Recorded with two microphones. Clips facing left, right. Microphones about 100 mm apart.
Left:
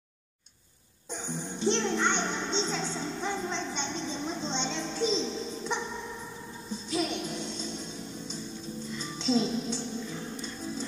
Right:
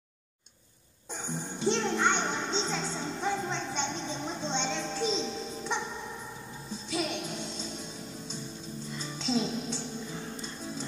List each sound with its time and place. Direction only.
1.2 s speech: 5° right (ahead or behind)
6.9 s music: centre (ahead or behind)
9.2 s speech: centre (ahead or behind)